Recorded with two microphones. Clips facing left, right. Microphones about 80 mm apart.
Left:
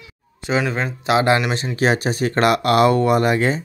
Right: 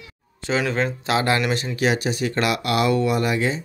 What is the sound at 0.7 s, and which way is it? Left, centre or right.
Speech, centre.